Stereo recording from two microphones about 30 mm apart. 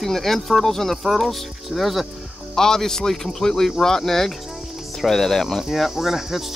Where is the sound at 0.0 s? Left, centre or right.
Centre.